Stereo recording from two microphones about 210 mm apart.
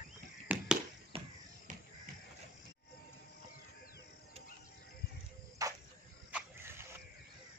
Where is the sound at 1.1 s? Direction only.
25° right (ahead or behind).